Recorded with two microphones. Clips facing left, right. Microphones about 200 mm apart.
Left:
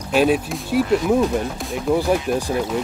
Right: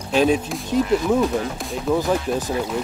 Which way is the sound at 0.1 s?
5° left (ahead or behind).